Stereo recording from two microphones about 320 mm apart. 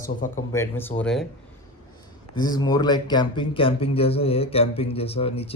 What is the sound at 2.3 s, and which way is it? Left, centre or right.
Speech, centre.